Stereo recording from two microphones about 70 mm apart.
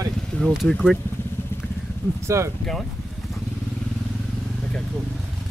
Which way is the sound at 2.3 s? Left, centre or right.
Right.